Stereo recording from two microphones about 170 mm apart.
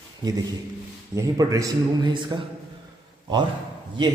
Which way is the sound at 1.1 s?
20° right (ahead or behind).